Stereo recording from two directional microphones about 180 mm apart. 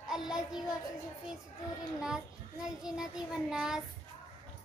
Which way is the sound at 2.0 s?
5° right (ahead or behind).